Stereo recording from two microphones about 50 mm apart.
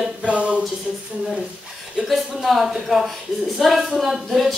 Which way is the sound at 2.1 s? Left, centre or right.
Centre.